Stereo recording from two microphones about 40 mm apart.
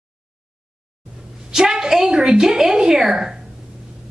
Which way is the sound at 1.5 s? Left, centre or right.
Centre.